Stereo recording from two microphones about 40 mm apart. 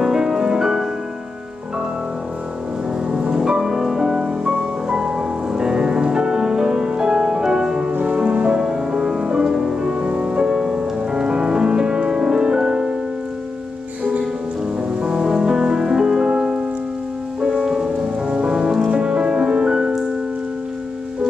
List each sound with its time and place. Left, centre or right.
0.0 s music: centre
3.1 s music: centre
10.5 s music: centre
10.8 s music: right
15.0 s music: centre